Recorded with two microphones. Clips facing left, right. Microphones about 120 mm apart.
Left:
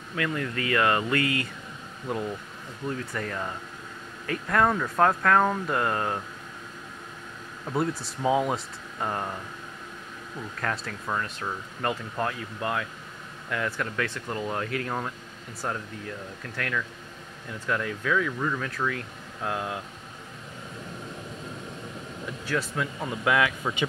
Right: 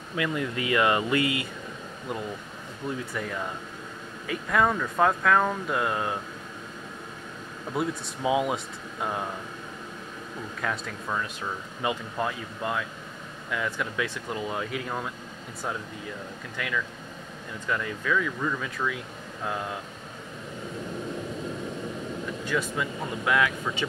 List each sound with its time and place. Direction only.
0.1 s speech: 15° right (ahead or behind)
2.1 s speech: centre (ahead or behind)
7.7 s speech: 5° right (ahead or behind)
10.6 s speech: 5° right (ahead or behind)
22.4 s speech: 5° left (ahead or behind)